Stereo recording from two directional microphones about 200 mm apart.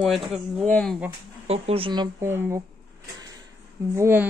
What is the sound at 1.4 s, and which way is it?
Speech, 30° right (ahead or behind).